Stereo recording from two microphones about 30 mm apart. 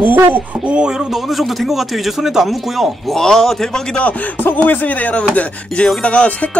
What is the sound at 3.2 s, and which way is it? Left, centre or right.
Speech, centre.